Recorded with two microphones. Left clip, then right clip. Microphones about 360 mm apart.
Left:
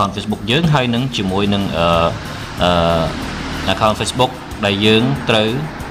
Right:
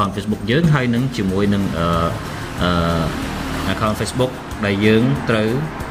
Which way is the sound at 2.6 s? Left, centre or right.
Left.